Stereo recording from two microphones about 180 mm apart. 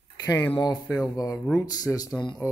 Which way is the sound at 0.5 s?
25° left (ahead or behind).